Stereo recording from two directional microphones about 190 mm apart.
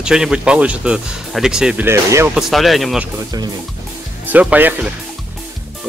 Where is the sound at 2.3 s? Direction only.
Centre (ahead or behind).